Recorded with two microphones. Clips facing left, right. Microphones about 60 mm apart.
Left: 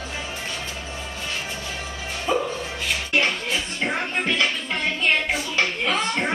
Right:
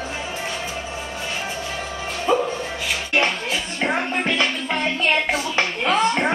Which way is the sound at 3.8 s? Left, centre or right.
Right.